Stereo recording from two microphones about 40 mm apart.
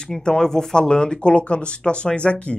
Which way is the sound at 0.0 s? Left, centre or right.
Centre.